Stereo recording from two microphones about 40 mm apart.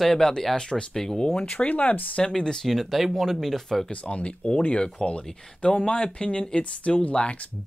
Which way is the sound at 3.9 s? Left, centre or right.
Left.